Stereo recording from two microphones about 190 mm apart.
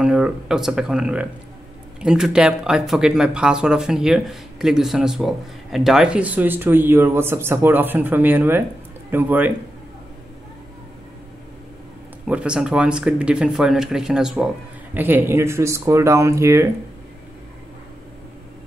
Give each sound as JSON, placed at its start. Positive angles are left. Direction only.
{"t": 0.0, "sound": "speech", "side_deg": -5}
{"t": 12.3, "sound": "speech", "side_deg": -5}